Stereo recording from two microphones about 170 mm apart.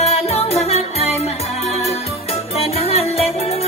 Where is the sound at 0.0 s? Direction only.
40° left (ahead or behind).